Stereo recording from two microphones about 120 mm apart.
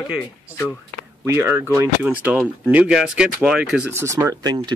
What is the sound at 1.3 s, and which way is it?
Speech, 20° right (ahead or behind).